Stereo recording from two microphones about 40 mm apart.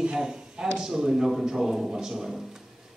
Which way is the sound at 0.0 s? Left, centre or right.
Right.